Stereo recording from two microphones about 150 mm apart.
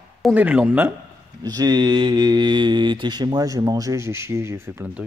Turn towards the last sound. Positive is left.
turn(degrees=-15)  # may be behind; listen again after turning